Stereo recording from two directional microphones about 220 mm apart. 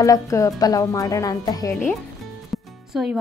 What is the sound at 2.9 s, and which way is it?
Speech, 5° right (ahead or behind).